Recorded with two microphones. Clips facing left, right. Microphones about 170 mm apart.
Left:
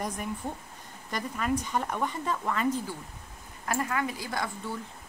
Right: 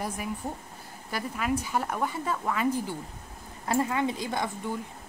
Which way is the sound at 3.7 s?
25° right (ahead or behind).